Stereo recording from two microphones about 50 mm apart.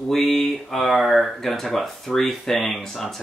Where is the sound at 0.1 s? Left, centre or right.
Centre.